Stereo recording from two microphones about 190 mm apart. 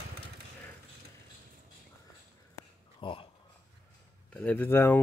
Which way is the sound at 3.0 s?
25° left (ahead or behind).